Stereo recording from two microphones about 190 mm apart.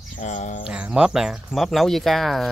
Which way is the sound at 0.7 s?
5° right (ahead or behind).